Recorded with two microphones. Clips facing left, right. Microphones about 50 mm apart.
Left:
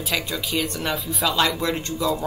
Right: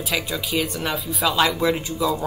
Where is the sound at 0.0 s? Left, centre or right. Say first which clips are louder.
Right 1 dB; centre.